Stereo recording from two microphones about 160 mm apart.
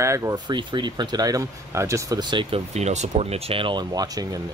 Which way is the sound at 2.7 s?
45° right (ahead or behind).